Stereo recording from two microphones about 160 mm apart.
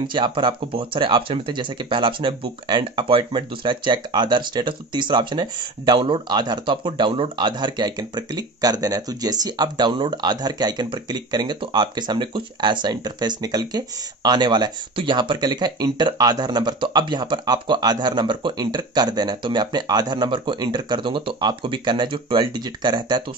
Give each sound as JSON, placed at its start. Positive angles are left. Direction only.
{"t": 0.0, "sound": "speech", "side_deg": -30}